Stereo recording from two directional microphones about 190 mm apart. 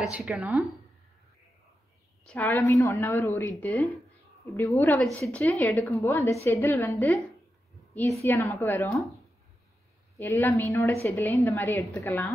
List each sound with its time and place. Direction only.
0.0 s speech: 5° right (ahead or behind)
2.2 s a woman's voice: 10° left (ahead or behind)
10.1 s a woman's voice: 15° left (ahead or behind)